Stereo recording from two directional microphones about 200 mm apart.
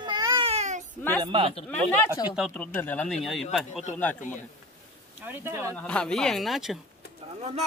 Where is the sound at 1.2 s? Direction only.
25° right (ahead or behind).